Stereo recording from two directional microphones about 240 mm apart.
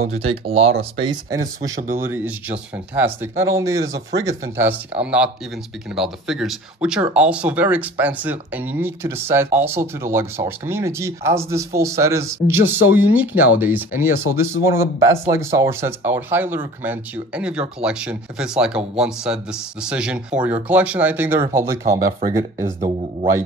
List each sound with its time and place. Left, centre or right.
0.1 s speech: right
1.0 s speech: centre